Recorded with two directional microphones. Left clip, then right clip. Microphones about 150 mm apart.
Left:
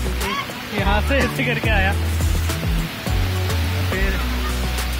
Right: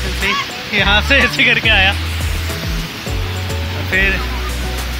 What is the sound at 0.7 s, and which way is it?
Speech, 15° right (ahead or behind).